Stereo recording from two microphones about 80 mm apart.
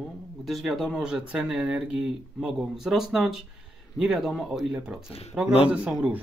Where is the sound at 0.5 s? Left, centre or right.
Centre.